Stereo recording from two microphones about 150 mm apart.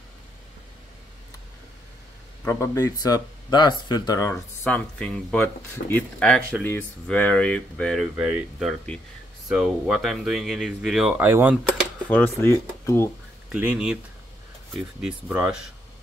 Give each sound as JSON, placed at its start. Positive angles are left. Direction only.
{"t": 2.4, "sound": "speech", "side_deg": 20}
{"t": 4.6, "sound": "speech", "side_deg": 5}
{"t": 11.2, "sound": "speech", "side_deg": -15}
{"t": 12.1, "sound": "speech", "side_deg": 15}
{"t": 13.5, "sound": "speech", "side_deg": -10}
{"t": 15.0, "sound": "speech", "side_deg": -5}